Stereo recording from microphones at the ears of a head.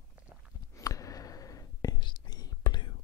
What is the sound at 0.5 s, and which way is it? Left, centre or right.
Whispering, left.